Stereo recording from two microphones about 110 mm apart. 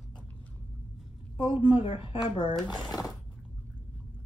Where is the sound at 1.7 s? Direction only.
55° left (ahead or behind).